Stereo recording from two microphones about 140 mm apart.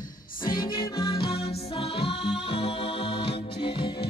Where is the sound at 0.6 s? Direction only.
35° left (ahead or behind).